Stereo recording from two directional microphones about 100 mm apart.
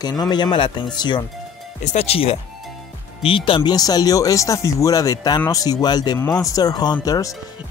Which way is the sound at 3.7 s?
40° left (ahead or behind).